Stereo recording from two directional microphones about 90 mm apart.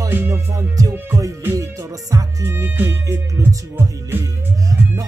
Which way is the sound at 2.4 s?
25° right (ahead or behind).